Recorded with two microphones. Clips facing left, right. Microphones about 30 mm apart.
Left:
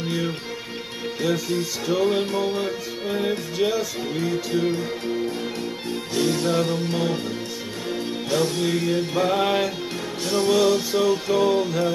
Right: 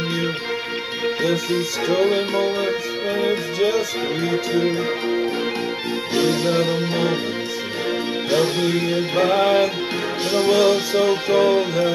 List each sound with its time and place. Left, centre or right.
1.6 s music: centre
3.5 s speech: centre
4.2 s music: right
10.3 s music: right